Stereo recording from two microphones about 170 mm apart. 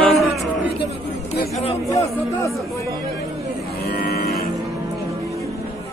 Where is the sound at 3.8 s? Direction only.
65° left (ahead or behind).